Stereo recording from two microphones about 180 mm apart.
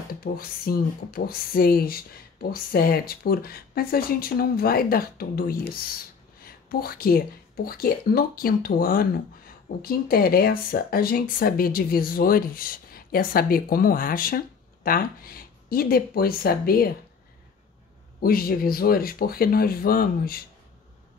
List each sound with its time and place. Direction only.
0.2 s speech: 55° left (ahead or behind)
18.2 s speech: 55° left (ahead or behind)